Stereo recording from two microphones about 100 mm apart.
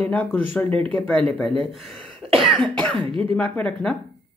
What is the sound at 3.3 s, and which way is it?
Speech, 15° left (ahead or behind).